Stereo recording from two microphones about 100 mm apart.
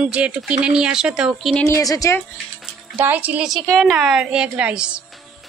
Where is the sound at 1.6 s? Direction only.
30° left (ahead or behind).